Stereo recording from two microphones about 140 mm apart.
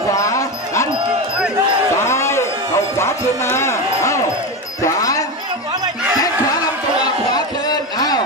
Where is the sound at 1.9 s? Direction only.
20° left (ahead or behind).